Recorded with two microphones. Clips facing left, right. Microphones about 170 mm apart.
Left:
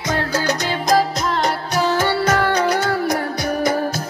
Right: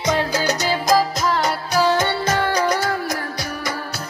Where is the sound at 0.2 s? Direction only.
15° right (ahead or behind).